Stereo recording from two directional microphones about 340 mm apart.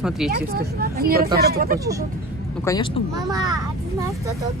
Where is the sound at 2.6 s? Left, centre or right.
Centre.